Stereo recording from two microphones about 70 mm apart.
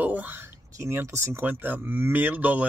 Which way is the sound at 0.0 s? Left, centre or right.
Right.